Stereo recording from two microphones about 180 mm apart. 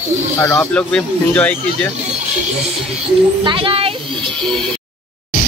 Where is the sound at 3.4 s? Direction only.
30° right (ahead or behind).